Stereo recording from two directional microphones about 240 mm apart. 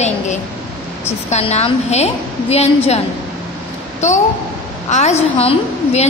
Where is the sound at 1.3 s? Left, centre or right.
Left.